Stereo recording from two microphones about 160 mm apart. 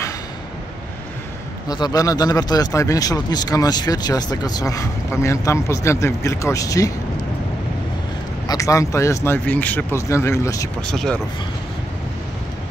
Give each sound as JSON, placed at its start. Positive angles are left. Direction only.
{"t": 1.7, "sound": "speech", "side_deg": 25}
{"t": 8.5, "sound": "speech", "side_deg": 20}
{"t": 10.9, "sound": "speech", "side_deg": 5}